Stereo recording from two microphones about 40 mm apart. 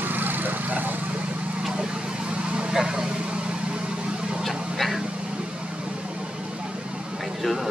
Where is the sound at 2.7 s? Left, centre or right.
Centre.